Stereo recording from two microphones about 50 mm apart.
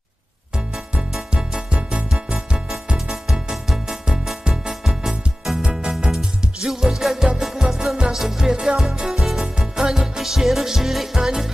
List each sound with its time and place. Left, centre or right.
1.3 s music: centre
5.6 s music: centre